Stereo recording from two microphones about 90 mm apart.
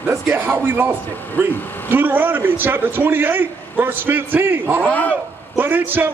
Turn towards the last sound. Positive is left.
turn(degrees=-20)  # may be behind; listen again after turning